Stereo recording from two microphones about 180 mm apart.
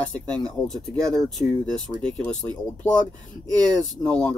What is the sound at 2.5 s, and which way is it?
Speech, 25° right (ahead or behind).